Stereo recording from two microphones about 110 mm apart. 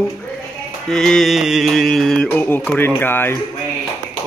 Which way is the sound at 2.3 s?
15° left (ahead or behind).